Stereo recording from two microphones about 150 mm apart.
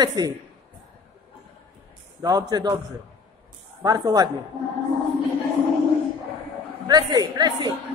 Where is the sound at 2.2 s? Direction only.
25° right (ahead or behind).